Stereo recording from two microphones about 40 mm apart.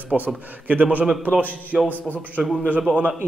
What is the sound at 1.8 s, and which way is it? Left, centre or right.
Speech, left.